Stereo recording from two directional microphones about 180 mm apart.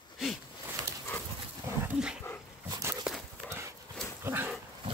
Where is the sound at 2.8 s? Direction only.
15° right (ahead or behind).